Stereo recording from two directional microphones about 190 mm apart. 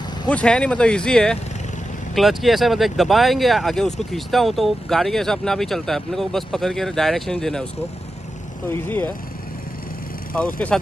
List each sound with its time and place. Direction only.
0.3 s speech: 5° left (ahead or behind)
8.6 s speech: 10° left (ahead or behind)
10.3 s speech: 5° left (ahead or behind)